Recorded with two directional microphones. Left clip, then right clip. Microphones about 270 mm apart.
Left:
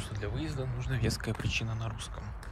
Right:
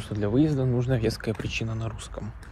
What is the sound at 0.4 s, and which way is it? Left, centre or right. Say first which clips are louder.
Speech: right 14 dB; centre.